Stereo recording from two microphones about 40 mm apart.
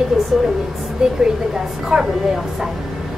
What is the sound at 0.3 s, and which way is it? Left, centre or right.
A woman's voice, centre.